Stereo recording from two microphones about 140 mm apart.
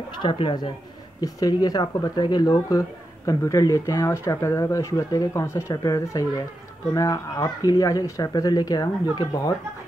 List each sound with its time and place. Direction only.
0.2 s speech: 35° left (ahead or behind)